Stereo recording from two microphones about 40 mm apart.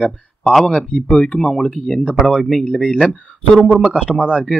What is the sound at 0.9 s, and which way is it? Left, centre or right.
Speech, centre.